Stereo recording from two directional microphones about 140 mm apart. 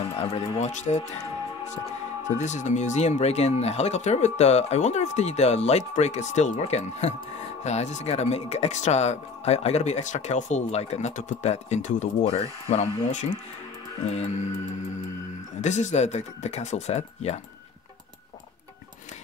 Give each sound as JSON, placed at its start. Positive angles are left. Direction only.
{"t": 0.0, "sound": "speech", "side_deg": 45}
{"t": 2.2, "sound": "speech", "side_deg": 60}
{"t": 15.6, "sound": "speech", "side_deg": 55}